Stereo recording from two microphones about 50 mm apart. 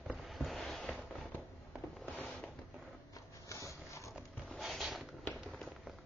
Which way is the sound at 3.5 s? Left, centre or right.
Left.